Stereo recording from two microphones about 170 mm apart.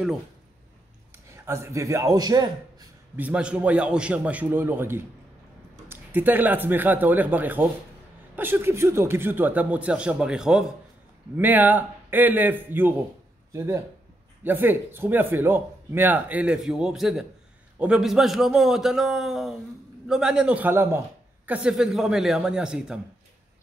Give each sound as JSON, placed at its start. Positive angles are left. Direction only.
{"t": 1.3, "sound": "a man's voice", "side_deg": -15}
{"t": 3.2, "sound": "a man's voice", "side_deg": -10}